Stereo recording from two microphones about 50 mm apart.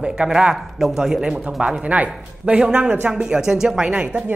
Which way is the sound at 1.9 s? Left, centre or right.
Right.